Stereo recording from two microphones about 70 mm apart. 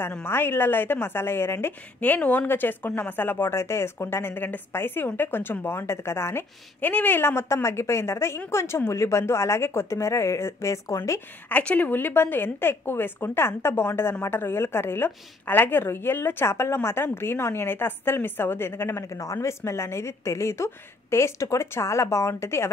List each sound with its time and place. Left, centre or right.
0.2 s a woman's voice: left
2.0 s a woman's voice: left
6.8 s a woman's voice: left
11.4 s a woman's voice: left